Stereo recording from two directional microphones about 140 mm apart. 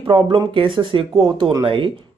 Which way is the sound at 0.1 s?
40° right (ahead or behind).